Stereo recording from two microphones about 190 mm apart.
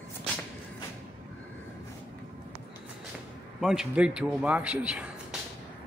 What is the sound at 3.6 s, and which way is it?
A man's voice, 5° right (ahead or behind).